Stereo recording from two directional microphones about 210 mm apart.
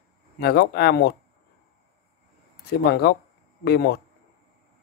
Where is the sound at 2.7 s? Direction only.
50° left (ahead or behind).